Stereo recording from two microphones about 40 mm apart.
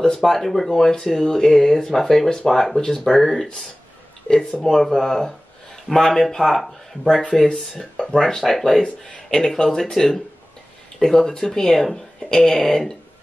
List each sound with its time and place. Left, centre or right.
0.0 s speech: centre
4.6 s speech: centre
7.2 s speech: centre